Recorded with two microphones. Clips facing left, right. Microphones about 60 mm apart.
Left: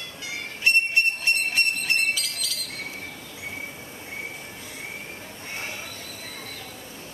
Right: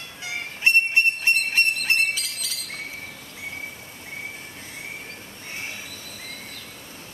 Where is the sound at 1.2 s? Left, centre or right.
Right.